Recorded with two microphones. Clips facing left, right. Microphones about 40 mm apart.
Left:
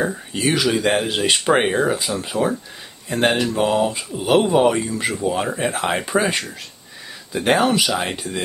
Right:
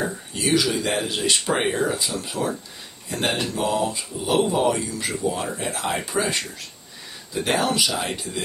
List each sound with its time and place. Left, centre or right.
0.0 s speech: left
7.4 s speech: left